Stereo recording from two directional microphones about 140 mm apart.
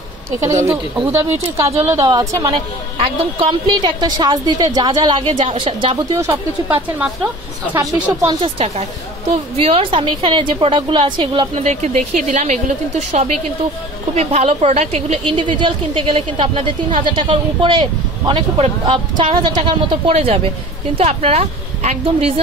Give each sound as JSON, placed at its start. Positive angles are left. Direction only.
{"t": 0.4, "sound": "a woman's voice", "side_deg": -20}
{"t": 1.8, "sound": "a woman's voice", "side_deg": -25}
{"t": 3.0, "sound": "a woman's voice", "side_deg": -40}
{"t": 6.1, "sound": "a woman's voice", "side_deg": -15}
{"t": 8.5, "sound": "a woman's voice", "side_deg": -50}
{"t": 11.5, "sound": "a woman's voice", "side_deg": -50}
{"t": 20.2, "sound": "a woman's voice", "side_deg": -45}